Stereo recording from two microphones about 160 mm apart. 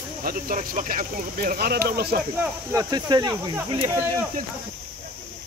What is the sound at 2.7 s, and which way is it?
Speech, 25° right (ahead or behind).